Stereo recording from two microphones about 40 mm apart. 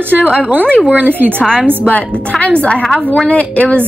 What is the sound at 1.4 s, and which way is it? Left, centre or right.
Speech, left.